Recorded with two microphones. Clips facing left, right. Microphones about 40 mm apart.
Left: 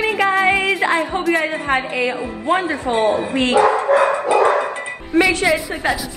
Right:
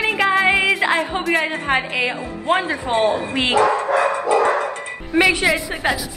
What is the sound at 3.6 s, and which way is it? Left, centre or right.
Dog, left.